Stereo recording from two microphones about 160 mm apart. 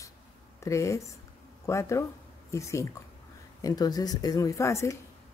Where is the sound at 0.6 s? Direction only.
20° left (ahead or behind).